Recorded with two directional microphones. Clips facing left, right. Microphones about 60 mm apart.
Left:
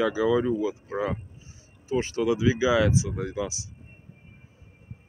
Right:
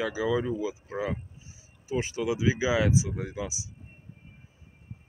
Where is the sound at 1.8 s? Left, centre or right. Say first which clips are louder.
Left 4 dB; centre.